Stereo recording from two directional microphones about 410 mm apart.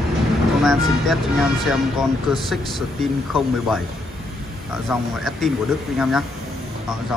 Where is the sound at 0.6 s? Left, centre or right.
Centre.